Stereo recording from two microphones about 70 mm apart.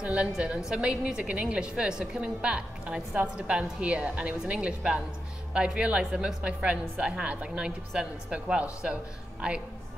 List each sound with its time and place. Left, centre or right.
0.0 s a woman's voice: centre